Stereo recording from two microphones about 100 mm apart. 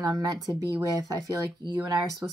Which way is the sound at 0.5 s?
35° right (ahead or behind).